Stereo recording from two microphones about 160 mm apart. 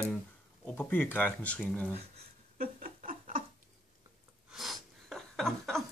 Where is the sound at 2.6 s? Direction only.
60° right (ahead or behind).